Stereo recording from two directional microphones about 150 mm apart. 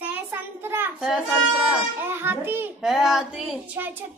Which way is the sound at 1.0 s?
5° right (ahead or behind).